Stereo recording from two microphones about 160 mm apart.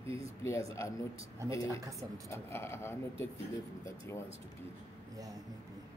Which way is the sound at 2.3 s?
15° left (ahead or behind).